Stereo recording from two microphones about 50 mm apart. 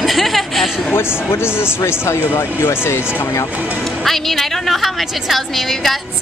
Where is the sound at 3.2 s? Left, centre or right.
Left.